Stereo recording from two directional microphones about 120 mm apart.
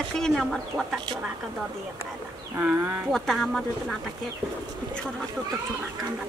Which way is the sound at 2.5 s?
15° right (ahead or behind).